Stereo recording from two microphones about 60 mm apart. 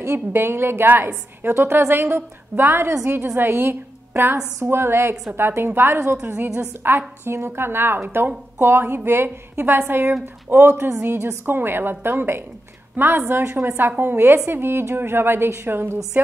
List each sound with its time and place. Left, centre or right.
0.3 s a woman's voice: right